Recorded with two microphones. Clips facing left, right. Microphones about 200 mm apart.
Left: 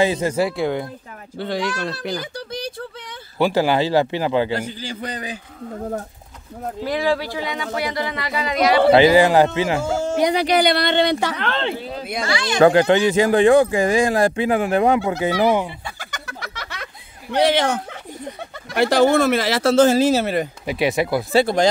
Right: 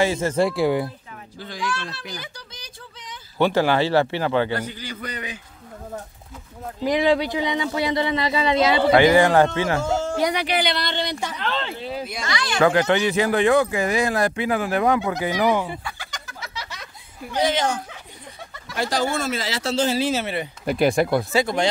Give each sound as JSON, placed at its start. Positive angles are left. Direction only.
{"t": 0.0, "sound": "speech", "side_deg": 15}
{"t": 0.4, "sound": "speech", "side_deg": 0}
{"t": 1.4, "sound": "a child's voice", "side_deg": 70}
{"t": 2.0, "sound": "a sound", "side_deg": 60}
{"t": 3.3, "sound": "speech", "side_deg": 10}
{"t": 4.6, "sound": "speech", "side_deg": 30}
{"t": 6.8, "sound": "speech", "side_deg": -20}
{"t": 8.9, "sound": "speech", "side_deg": 15}
{"t": 10.3, "sound": "speech", "side_deg": 40}
{"t": 12.2, "sound": "speech", "side_deg": 30}
{"t": 16.0, "sound": "a sound", "side_deg": 55}
{"t": 18.7, "sound": "speech", "side_deg": 60}
{"t": 20.6, "sound": "speech", "side_deg": 0}
{"t": 21.3, "sound": "speech", "side_deg": 30}